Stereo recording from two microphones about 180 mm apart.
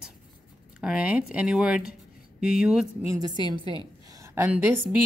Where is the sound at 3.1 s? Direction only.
20° right (ahead or behind).